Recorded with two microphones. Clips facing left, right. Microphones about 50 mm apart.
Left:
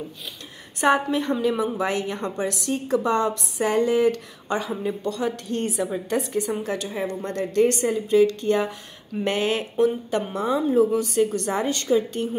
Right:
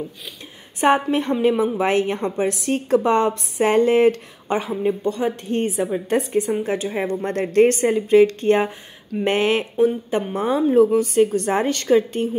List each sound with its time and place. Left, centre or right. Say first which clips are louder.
0.8 s a woman's voice: right 3 dB; right
4.5 s a woman's voice: right 5 dB; right
11.7 s a woman's voice: right 4 dB; right